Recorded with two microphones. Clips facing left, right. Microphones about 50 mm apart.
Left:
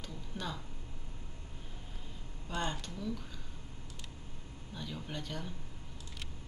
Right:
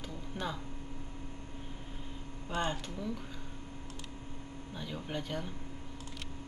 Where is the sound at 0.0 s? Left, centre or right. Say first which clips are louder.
Right 3 dB; centre.